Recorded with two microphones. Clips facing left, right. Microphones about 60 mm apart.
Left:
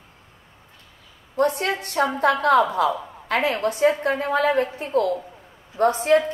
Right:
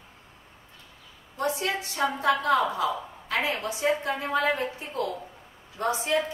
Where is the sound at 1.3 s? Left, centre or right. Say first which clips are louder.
Left 7 dB; left.